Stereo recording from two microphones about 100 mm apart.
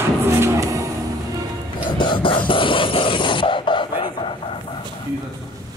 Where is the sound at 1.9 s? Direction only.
55° left (ahead or behind).